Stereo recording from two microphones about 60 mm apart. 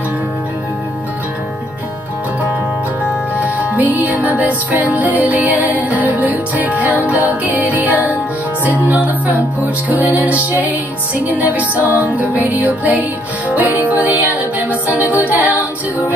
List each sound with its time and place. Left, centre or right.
3.3 s music: right